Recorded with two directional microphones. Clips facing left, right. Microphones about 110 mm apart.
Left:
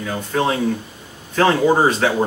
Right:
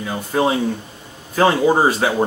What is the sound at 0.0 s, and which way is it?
Speech, 10° right (ahead or behind).